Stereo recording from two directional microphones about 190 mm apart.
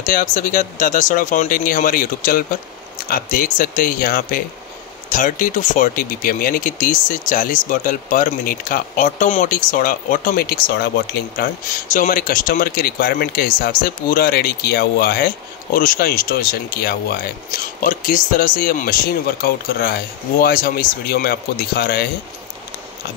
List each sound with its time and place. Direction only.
0.0 s speech: 45° left (ahead or behind)